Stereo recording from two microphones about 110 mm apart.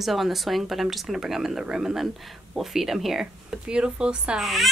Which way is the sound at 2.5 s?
Centre (ahead or behind).